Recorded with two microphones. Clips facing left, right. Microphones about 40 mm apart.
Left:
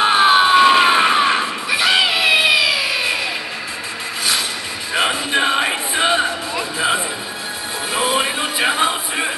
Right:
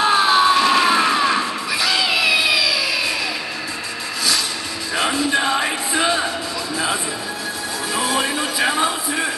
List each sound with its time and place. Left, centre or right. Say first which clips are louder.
0.0 s a sound: left 2 dB; left
4.9 s music: left 1 dB; left
7.9 s music: left 2 dB; left